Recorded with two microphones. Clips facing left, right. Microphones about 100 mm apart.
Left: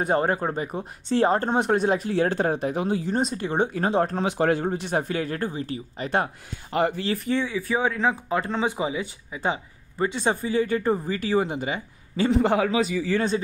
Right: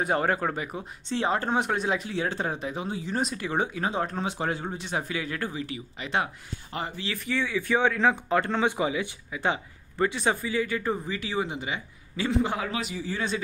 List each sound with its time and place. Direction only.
0.0 s speech: 30° left (ahead or behind)
1.0 s speech: 45° left (ahead or behind)
3.1 s speech: 35° left (ahead or behind)
4.2 s speech: 60° left (ahead or behind); by 7.4 s 40° left (ahead or behind)
7.9 s speech: 15° left (ahead or behind)
8.7 s speech: 25° left (ahead or behind)
10.3 s speech: 40° left (ahead or behind)
12.4 s a man's voice: 75° left (ahead or behind)